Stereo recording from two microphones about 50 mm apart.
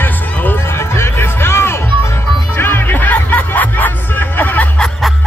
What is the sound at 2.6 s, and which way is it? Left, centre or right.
Music, left.